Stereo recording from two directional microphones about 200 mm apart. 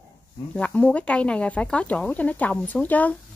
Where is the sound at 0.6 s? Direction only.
5° left (ahead or behind).